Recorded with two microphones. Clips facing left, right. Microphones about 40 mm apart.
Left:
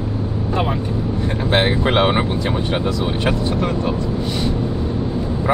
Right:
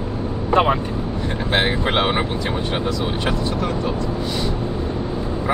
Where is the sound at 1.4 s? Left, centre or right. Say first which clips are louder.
Left 3 dB; centre.